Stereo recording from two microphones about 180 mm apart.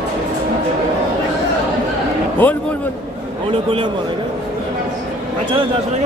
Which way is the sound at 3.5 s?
30° right (ahead or behind).